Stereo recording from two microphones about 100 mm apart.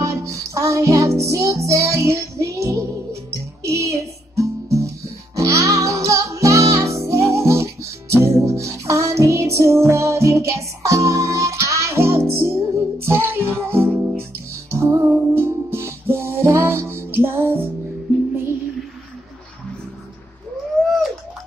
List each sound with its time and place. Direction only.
0.0 s music: 30° right (ahead or behind)